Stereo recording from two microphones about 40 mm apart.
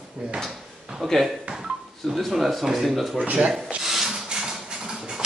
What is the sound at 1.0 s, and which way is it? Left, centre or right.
Speech, centre.